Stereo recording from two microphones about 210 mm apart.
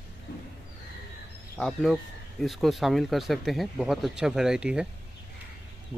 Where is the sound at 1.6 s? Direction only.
Centre (ahead or behind).